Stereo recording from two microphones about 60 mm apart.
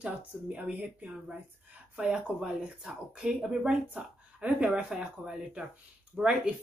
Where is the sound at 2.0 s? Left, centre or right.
Centre.